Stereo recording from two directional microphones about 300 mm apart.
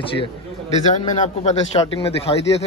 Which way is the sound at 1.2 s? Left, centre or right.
Left.